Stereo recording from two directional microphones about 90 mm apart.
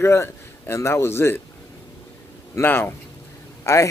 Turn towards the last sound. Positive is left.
turn(degrees=35)  # may be behind; listen again after turning